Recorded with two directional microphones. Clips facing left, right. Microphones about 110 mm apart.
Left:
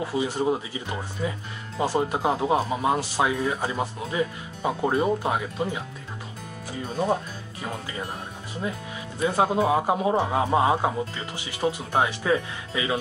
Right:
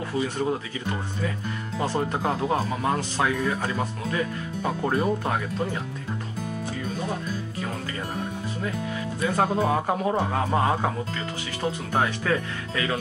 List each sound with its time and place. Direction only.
0.0 s speech: 15° left (ahead or behind)
9.4 s speech: 15° left (ahead or behind)